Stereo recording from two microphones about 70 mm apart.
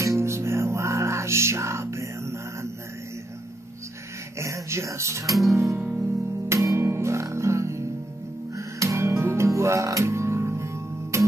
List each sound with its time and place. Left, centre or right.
0.0 s music: right
4.4 s music: right
5.3 s music: centre
5.8 s music: centre
6.5 s music: right